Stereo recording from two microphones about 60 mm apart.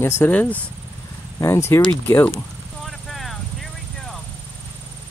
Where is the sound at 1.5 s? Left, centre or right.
Left.